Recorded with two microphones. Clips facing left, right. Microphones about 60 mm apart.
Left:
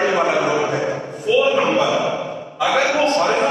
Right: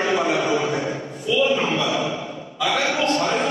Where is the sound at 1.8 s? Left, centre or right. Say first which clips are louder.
Left 5 dB; left.